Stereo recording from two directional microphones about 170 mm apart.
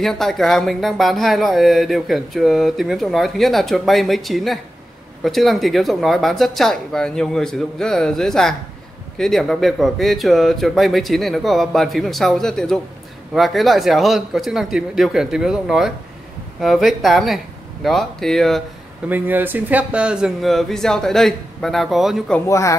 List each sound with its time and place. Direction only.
0.0 s speech: centre (ahead or behind)
19.0 s speech: 10° right (ahead or behind)
22.5 s speech: 15° left (ahead or behind)